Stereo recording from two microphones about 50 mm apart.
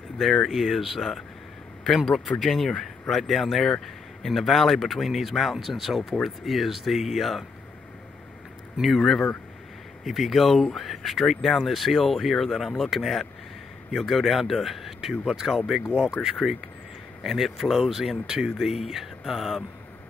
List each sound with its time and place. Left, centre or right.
0.2 s speech: centre
8.8 s speech: centre
16.2 s speech: centre
17.2 s speech: centre